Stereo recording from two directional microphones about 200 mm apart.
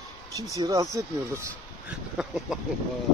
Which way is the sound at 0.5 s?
20° right (ahead or behind).